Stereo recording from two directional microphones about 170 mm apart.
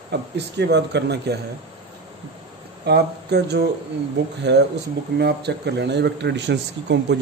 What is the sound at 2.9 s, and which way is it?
A man's voice, 75° right (ahead or behind).